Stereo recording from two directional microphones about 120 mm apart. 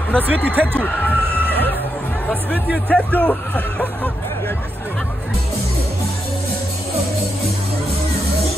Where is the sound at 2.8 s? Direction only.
10° left (ahead or behind).